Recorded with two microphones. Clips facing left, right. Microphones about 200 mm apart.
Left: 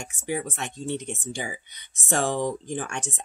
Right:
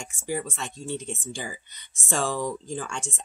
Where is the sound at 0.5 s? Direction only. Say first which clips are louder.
Left 2 dB; 20° left (ahead or behind).